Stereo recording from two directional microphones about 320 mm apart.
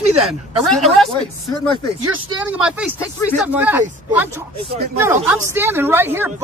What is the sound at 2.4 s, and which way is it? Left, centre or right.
A woman's voice, centre.